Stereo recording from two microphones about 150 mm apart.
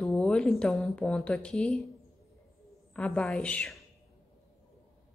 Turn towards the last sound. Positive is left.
turn(degrees=10)  # may be behind; listen again after turning